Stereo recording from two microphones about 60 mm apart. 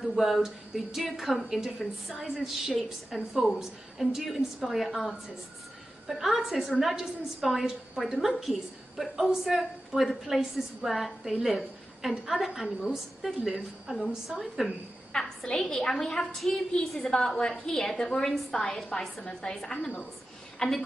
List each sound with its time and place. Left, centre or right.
0.0 s a woman's voice: centre
15.1 s a woman's voice: centre